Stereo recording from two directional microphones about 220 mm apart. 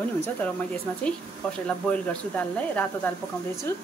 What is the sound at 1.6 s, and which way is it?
Speech, 5° left (ahead or behind).